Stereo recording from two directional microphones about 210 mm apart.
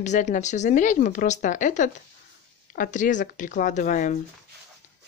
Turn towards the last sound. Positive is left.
turn(degrees=35)  # may be behind; listen again after turning